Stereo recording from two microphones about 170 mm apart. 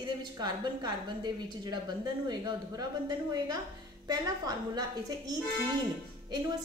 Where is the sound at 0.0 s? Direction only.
25° right (ahead or behind).